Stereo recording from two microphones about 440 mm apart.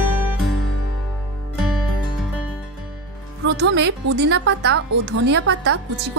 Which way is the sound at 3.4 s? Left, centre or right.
Right.